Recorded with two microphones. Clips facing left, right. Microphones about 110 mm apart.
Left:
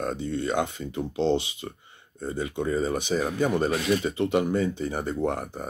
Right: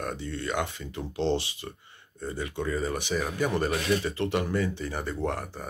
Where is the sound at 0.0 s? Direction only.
20° left (ahead or behind).